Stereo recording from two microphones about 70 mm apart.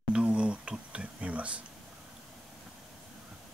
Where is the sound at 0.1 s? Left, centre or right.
Centre.